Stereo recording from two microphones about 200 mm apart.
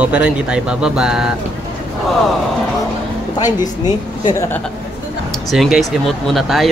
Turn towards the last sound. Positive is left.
turn(degrees=0)  # may be behind; listen again after turning